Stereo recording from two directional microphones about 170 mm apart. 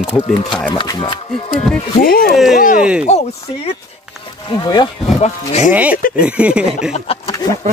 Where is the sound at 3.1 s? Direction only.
40° left (ahead or behind).